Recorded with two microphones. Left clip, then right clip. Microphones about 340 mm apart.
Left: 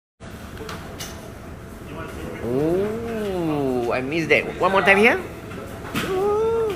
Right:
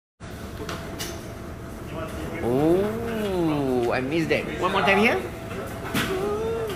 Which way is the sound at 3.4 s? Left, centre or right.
Centre.